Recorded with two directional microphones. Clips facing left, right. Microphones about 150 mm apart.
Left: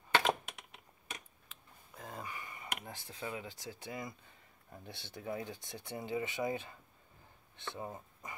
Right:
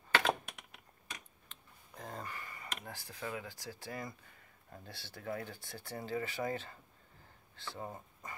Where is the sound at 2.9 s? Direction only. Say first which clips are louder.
Right 3 dB; 20° left (ahead or behind).